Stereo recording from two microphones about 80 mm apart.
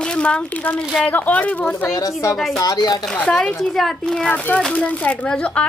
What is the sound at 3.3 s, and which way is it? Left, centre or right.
Speech, centre.